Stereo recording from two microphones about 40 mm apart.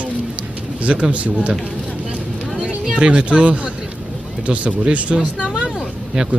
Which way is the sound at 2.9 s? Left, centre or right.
Right.